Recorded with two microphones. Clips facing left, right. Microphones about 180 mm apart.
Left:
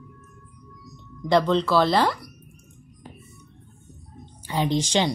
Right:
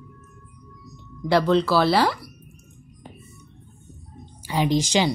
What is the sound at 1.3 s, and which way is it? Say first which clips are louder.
Speech: right 1 dB; 5° right (ahead or behind).